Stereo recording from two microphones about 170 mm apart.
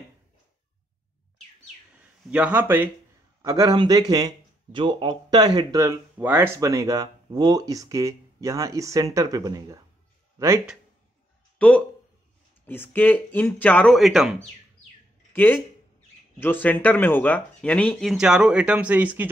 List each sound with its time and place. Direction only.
2.3 s speech: 10° right (ahead or behind)
11.5 s a sound: 5° left (ahead or behind)
12.6 s speech: 10° left (ahead or behind)
15.3 s speech: 10° left (ahead or behind)
18.1 s speech: 5° right (ahead or behind)